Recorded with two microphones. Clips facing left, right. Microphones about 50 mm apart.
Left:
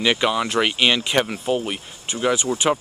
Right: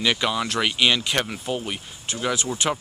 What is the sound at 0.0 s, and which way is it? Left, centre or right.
Speech, centre.